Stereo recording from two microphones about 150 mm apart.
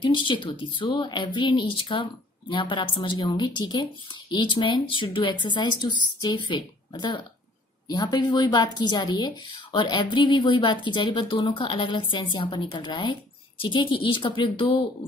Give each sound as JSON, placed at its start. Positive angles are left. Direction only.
{"t": 0.0, "sound": "speech", "side_deg": 30}